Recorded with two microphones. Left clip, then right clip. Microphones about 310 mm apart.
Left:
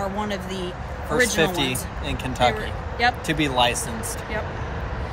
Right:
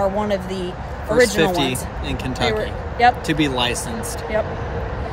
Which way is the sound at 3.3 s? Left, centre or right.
Centre.